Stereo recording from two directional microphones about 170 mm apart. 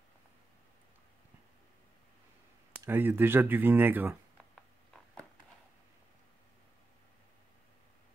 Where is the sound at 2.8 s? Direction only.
15° right (ahead or behind).